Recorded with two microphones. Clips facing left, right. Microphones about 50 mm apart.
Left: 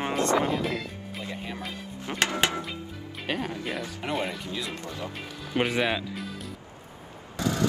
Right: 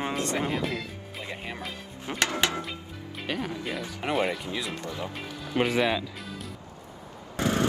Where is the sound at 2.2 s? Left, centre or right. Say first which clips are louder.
Left 1 dB; left.